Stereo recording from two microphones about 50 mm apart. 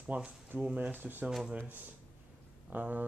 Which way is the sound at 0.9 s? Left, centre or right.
Right.